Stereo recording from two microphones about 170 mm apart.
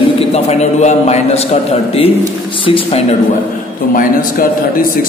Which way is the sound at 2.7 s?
35° left (ahead or behind).